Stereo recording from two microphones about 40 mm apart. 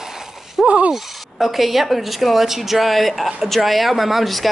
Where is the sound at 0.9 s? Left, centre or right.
Centre.